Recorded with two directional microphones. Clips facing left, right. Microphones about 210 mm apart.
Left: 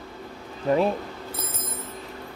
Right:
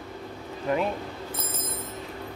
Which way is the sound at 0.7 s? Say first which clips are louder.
Left 5 dB; 30° left (ahead or behind).